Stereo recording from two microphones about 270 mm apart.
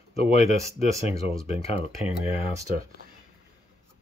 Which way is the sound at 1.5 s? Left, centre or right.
Left.